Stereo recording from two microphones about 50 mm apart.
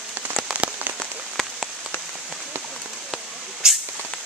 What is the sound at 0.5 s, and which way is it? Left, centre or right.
Rain on surface, right.